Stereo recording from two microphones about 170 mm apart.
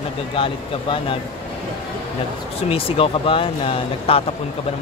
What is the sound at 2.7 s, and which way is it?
Speech, 35° left (ahead or behind).